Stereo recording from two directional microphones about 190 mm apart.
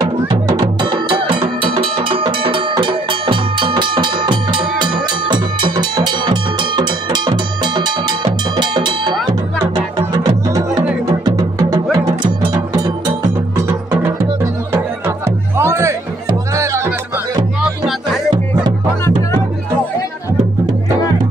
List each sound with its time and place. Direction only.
0.0 s music: 20° right (ahead or behind)
11.2 s music: 20° right (ahead or behind)
14.7 s music: 15° right (ahead or behind)